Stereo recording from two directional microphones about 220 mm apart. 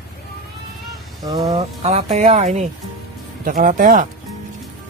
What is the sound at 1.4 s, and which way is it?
Speech, 30° right (ahead or behind).